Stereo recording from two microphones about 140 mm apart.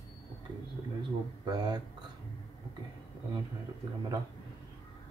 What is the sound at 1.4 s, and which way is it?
Speech, 30° right (ahead or behind).